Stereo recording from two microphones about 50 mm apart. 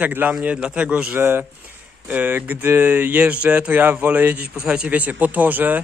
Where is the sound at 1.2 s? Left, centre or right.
Right.